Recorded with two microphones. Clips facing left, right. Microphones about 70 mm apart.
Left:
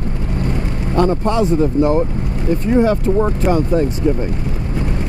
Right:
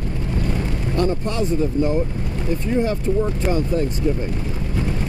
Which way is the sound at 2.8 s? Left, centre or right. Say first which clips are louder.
Left 6 dB; left.